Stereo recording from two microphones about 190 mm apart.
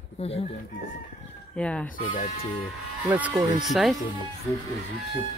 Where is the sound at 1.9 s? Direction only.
45° left (ahead or behind).